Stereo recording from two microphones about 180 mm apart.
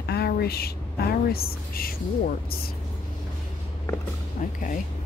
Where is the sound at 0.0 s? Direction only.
65° left (ahead or behind).